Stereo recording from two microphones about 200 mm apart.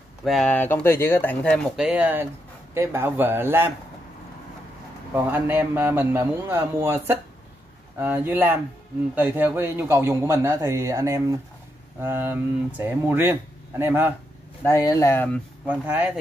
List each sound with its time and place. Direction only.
0.2 s speech: centre (ahead or behind)
1.9 s a man's voice: 10° right (ahead or behind)
5.1 s a man's voice: 10° right (ahead or behind)
14.6 s speech: 15° left (ahead or behind)
15.6 s a man's voice: 10° right (ahead or behind)